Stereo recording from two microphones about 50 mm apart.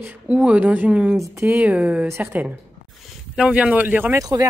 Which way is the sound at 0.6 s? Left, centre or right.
Right.